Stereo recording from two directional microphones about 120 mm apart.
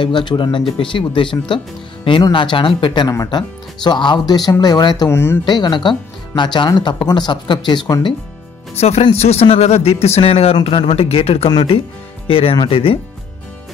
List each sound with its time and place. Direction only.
0.0 s speech: 40° left (ahead or behind)
5.1 s speech: 20° left (ahead or behind)
5.4 s speech: 40° left (ahead or behind)
8.7 s a man's voice: 60° left (ahead or behind)